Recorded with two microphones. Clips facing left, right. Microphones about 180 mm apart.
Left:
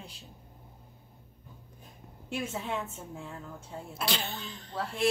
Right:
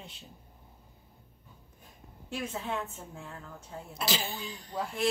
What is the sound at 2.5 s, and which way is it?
Speech, 10° left (ahead or behind).